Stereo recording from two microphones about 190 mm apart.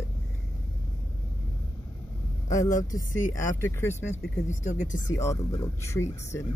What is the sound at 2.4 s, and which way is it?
Speech, 15° left (ahead or behind).